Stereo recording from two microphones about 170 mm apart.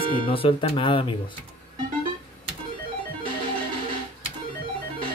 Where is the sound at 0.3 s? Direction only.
30° left (ahead or behind).